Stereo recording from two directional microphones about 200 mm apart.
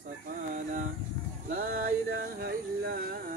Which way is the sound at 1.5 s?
45° right (ahead or behind).